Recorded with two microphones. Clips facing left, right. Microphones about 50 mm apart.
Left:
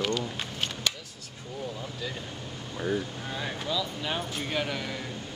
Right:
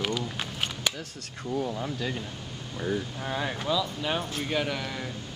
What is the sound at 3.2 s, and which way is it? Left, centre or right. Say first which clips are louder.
Speech: right 3 dB; centre.